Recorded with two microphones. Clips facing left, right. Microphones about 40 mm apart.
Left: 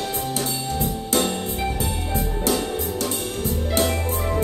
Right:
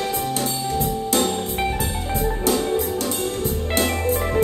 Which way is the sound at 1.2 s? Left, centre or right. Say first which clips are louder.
Even; left.